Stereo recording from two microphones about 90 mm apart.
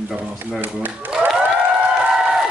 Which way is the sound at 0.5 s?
20° right (ahead or behind).